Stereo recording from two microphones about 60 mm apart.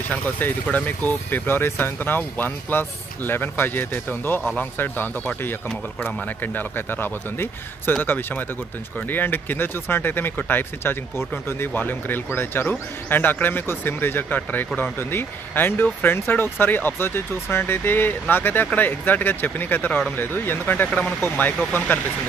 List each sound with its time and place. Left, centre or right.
0.1 s speech: left